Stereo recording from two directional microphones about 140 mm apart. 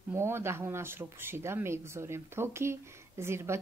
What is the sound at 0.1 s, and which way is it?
Speech, 20° right (ahead or behind).